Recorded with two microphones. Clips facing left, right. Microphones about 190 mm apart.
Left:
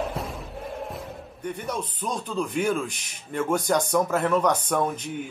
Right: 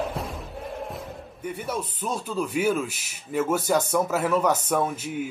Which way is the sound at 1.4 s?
5° right (ahead or behind).